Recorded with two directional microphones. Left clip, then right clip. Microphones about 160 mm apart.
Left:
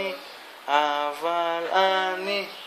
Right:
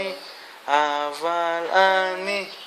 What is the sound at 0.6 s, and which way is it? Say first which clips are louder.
Mantra: right 2 dB; 35° right (ahead or behind).